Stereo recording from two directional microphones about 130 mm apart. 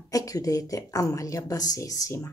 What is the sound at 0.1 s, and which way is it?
Speech, 25° left (ahead or behind).